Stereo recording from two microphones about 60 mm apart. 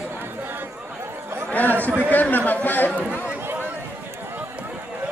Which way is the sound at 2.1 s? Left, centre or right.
Left.